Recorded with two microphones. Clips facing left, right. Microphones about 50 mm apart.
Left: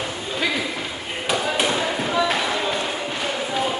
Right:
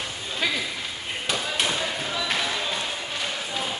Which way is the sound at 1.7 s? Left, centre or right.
Centre.